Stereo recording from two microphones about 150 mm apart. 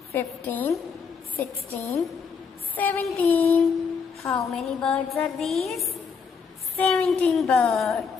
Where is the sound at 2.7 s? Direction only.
10° left (ahead or behind).